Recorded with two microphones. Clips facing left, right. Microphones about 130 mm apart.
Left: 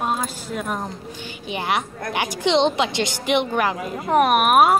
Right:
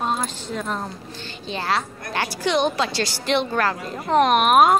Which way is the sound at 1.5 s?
15° left (ahead or behind).